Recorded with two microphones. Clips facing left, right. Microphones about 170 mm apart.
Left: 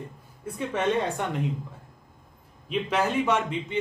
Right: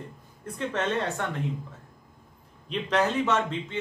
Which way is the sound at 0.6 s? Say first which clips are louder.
Left 2 dB; 10° left (ahead or behind).